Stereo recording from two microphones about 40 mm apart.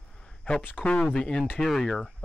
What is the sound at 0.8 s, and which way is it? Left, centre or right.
Speech, centre.